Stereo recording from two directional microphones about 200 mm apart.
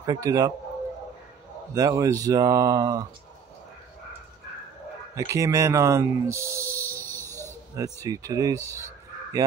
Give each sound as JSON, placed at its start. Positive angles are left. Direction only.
{"t": 0.0, "sound": "speech", "side_deg": -15}
{"t": 1.7, "sound": "speech", "side_deg": -15}
{"t": 5.1, "sound": "speech", "side_deg": -15}
{"t": 7.2, "sound": "a sound", "side_deg": 10}
{"t": 7.7, "sound": "speech", "side_deg": -15}